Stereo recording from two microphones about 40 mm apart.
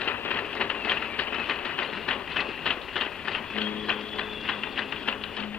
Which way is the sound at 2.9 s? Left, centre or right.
Centre.